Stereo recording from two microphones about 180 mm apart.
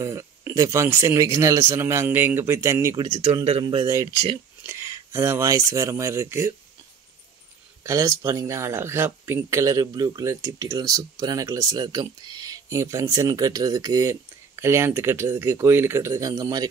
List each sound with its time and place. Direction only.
0.0 s speech: 15° right (ahead or behind)
3.4 s speech: 30° right (ahead or behind)
3.8 s speech: 15° right (ahead or behind)
7.8 s speech: 15° right (ahead or behind)